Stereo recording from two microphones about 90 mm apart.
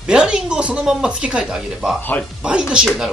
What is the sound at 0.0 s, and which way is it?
Speech, 10° right (ahead or behind).